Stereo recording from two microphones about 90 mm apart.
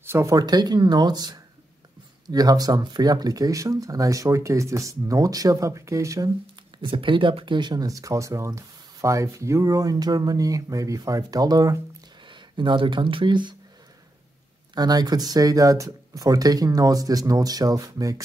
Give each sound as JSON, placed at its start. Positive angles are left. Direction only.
{"t": 0.0, "sound": "speech", "side_deg": -30}
{"t": 6.8, "sound": "speech", "side_deg": -70}
{"t": 12.3, "sound": "speech", "side_deg": -60}
{"t": 14.8, "sound": "speech", "side_deg": -50}